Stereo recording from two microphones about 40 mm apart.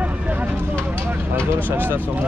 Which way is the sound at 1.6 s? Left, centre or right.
Right.